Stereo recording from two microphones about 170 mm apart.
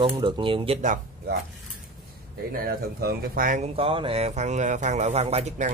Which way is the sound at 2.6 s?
60° right (ahead or behind).